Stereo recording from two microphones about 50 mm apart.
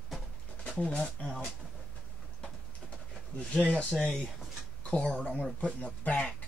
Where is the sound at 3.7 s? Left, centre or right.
Left.